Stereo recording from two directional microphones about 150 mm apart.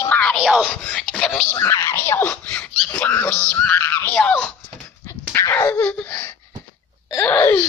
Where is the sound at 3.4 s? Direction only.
15° left (ahead or behind).